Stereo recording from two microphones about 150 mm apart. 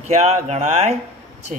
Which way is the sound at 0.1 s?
50° right (ahead or behind).